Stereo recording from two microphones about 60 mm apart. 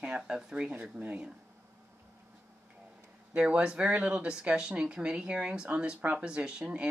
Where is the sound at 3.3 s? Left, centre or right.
Centre.